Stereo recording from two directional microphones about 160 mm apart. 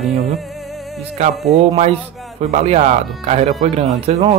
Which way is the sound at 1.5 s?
40° right (ahead or behind).